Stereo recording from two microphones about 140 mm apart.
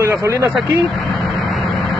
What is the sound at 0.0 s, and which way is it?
Speech, 20° right (ahead or behind).